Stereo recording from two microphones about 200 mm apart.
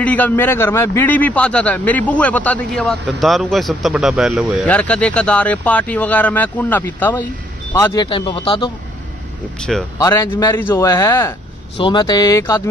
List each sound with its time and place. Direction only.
0.0 s a man's voice: 5° left (ahead or behind); by 8.7 s 25° left (ahead or behind)
9.6 s speech: centre (ahead or behind)
9.9 s a man's voice: 15° left (ahead or behind)
11.7 s speech: 25° left (ahead or behind)